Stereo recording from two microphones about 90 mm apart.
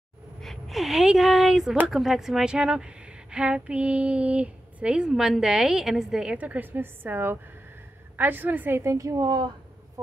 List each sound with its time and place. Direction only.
0.4 s a sound: centre (ahead or behind)
1.9 s a woman's voice: centre (ahead or behind); by 8.9 s 25° right (ahead or behind)
8.9 s a woman's voice: 40° right (ahead or behind)